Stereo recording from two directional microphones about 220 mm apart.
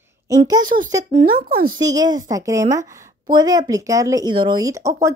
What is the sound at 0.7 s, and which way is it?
A child's voice, 35° right (ahead or behind).